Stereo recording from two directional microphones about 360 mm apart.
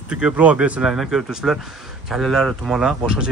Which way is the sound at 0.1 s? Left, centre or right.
Centre.